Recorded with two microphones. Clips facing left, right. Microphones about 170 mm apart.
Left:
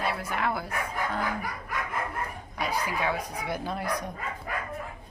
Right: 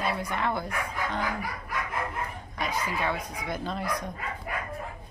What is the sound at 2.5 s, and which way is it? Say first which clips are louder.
Speech: left 1 dB; 10° left (ahead or behind).